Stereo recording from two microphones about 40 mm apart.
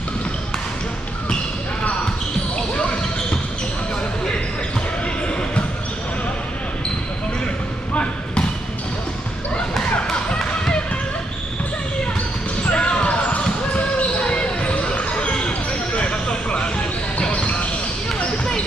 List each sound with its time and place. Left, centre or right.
2.7 s basketball bounce: left
7.9 s basketball bounce: left
10.1 s music: centre
12.7 s basketball bounce: left
17.3 s basketball bounce: left